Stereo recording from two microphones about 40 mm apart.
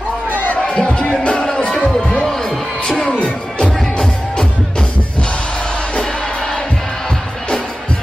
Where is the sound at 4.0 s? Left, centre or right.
Centre.